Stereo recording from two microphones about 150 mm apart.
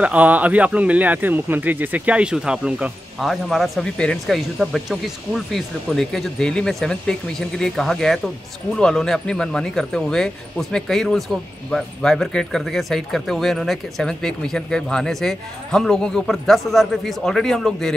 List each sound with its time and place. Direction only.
0.0 s speech: 10° right (ahead or behind)